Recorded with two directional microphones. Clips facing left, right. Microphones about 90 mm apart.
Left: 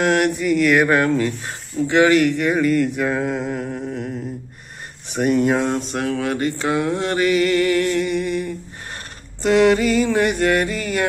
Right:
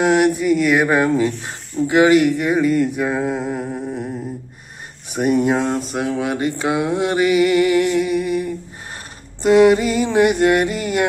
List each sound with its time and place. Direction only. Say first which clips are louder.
0.0 s speech: right 3 dB; 5° right (ahead or behind)
1.9 s mantra: right 2 dB; 15° right (ahead or behind)
5.0 s speech: right 1 dB; 5° right (ahead or behind)
6.0 s mantra: even; 15° right (ahead or behind)
9.8 s music: right 1 dB; 20° right (ahead or behind)